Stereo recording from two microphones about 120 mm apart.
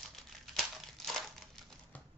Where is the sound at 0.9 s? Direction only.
Centre (ahead or behind).